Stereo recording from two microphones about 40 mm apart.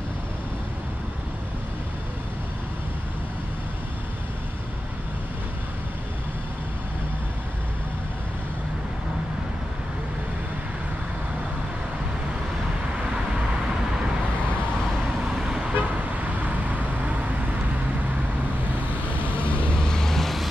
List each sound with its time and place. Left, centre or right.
15.3 s vehicle: centre
16.4 s vehicle: right
19.4 s vehicle: left
19.8 s vehicle: centre